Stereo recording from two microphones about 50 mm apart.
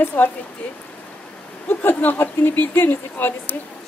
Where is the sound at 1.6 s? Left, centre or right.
Left.